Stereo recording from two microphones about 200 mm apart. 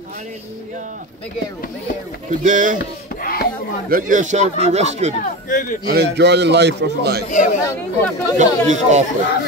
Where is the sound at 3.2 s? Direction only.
50° left (ahead or behind).